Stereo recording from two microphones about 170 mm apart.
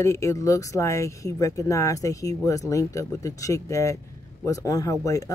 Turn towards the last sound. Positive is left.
turn(degrees=20)  # may be behind; listen again after turning